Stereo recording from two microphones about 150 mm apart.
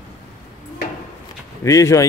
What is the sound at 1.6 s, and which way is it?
Speech, 20° left (ahead or behind).